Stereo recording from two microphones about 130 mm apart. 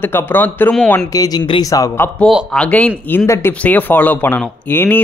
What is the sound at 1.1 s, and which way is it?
A man's voice, 25° left (ahead or behind).